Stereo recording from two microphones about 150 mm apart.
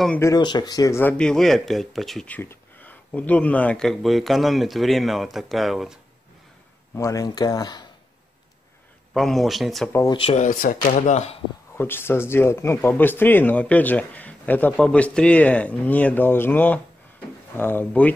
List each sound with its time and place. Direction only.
0.2 s speech: 25° left (ahead or behind); by 5.9 s centre (ahead or behind)
7.0 s speech: 20° left (ahead or behind)
9.1 s speech: centre (ahead or behind)
10.1 s speech: 40° left (ahead or behind)
10.4 s speech: 65° left (ahead or behind)
11.7 s speech: 15° left (ahead or behind)